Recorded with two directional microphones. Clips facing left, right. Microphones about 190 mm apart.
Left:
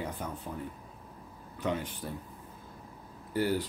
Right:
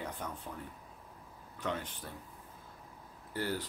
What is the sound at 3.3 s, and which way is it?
Speech, 15° left (ahead or behind).